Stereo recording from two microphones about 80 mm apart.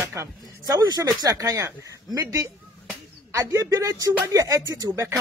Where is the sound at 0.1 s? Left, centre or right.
Right.